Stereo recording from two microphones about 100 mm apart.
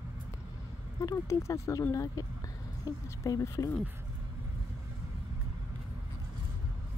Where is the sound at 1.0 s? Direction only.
30° left (ahead or behind).